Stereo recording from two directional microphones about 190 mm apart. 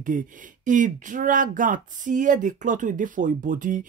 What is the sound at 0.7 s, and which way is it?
Speech, 40° right (ahead or behind).